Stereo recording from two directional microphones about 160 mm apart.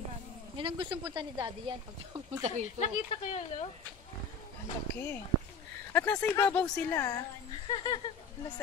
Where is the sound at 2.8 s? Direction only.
45° left (ahead or behind).